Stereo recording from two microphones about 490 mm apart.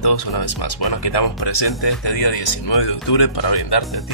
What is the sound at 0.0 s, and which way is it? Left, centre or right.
Speech, left.